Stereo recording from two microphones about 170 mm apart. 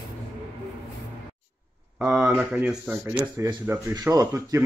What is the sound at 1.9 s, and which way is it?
Speech, 5° right (ahead or behind).